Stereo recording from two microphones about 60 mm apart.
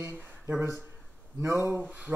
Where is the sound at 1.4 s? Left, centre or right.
Right.